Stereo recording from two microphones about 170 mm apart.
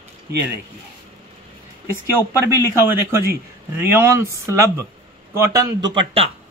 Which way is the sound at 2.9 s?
10° right (ahead or behind).